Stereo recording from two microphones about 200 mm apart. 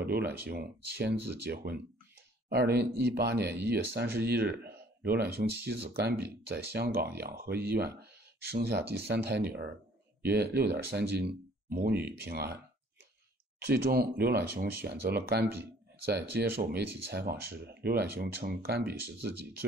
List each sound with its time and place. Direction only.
0.0 s speech: 50° right (ahead or behind)
13.6 s speech: 55° right (ahead or behind)